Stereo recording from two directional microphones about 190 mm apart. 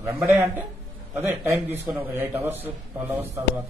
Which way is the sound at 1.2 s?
15° right (ahead or behind).